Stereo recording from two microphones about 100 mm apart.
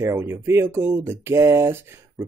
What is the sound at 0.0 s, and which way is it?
Speech, 25° right (ahead or behind).